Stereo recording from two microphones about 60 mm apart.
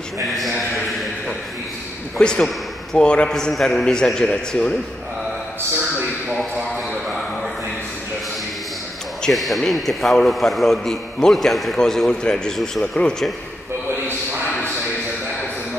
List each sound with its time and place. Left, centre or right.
2.1 s a man's voice: centre
5.9 s a sound: right
9.3 s a man's voice: centre